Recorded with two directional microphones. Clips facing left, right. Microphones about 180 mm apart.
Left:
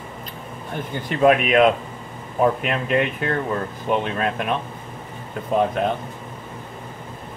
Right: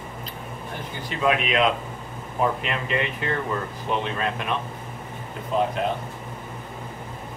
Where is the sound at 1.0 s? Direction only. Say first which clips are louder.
Left 7 dB; 55° left (ahead or behind).